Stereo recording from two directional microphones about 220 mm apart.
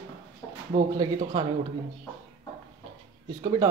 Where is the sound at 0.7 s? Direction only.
40° right (ahead or behind).